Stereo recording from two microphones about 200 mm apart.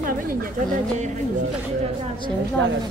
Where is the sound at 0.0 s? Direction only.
45° right (ahead or behind).